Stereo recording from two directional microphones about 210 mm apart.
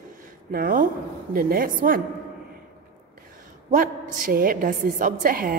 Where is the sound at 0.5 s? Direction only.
45° right (ahead or behind).